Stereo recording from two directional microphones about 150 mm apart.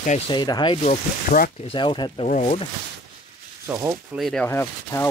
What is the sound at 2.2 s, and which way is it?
Speech, 45° left (ahead or behind).